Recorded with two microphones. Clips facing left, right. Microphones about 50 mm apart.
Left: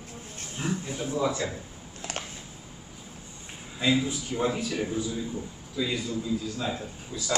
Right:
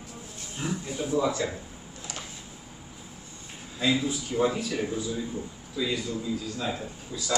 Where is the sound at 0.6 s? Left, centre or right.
Left.